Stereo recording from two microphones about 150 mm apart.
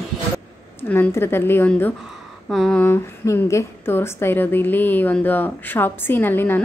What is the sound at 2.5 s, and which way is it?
Speech, centre (ahead or behind).